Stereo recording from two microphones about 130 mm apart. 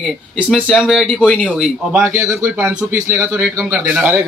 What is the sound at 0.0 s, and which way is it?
Speech, centre (ahead or behind).